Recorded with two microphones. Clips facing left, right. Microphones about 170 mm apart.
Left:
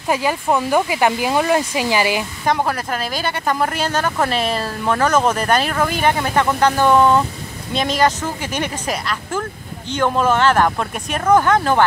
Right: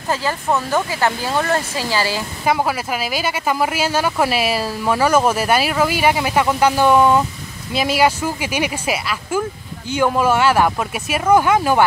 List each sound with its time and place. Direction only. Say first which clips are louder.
0.1 s speech: left 2 dB; 15° left (ahead or behind)
2.4 s speech: right 2 dB; 5° right (ahead or behind)